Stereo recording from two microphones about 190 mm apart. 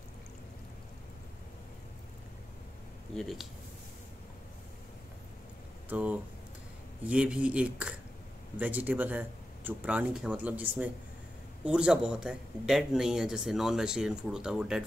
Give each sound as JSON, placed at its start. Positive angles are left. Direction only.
{"t": 3.2, "sound": "speech", "side_deg": 0}
{"t": 5.9, "sound": "speech", "side_deg": -5}